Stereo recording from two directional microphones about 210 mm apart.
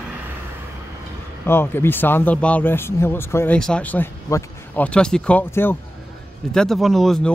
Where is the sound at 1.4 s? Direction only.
10° left (ahead or behind).